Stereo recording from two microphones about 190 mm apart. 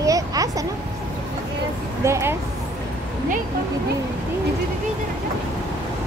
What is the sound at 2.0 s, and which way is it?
Speech, 15° right (ahead or behind).